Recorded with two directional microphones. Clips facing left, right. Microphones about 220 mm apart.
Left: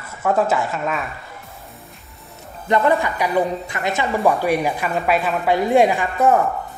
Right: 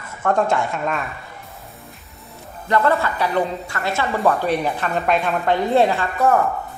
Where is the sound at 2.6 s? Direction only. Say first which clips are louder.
Left 1 dB; 15° left (ahead or behind).